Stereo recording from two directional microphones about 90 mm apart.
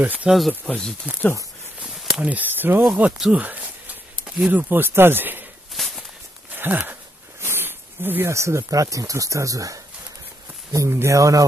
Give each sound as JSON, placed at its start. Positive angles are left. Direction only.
{"t": 0.0, "sound": "speech", "side_deg": -20}
{"t": 0.3, "sound": "speech", "side_deg": 0}
{"t": 2.2, "sound": "speech", "side_deg": -20}
{"t": 2.8, "sound": "speech", "side_deg": -5}
{"t": 5.7, "sound": "walk", "side_deg": 0}
{"t": 6.5, "sound": "speech", "side_deg": -20}